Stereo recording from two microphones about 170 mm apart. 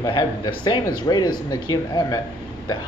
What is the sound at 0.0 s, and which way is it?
Speech, 30° left (ahead or behind).